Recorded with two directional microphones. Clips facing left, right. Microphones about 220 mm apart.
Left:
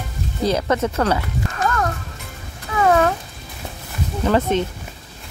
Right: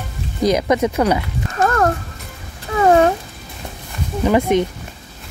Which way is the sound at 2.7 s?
30° right (ahead or behind).